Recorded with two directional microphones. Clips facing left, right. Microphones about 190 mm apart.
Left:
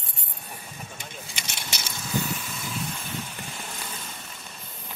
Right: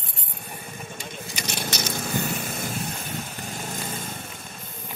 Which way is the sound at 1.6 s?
55° right (ahead or behind).